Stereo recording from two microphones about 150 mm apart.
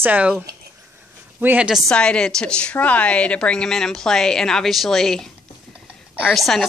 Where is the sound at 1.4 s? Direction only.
10° right (ahead or behind).